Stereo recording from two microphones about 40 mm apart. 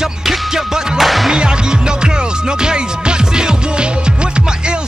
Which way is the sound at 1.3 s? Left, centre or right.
Right.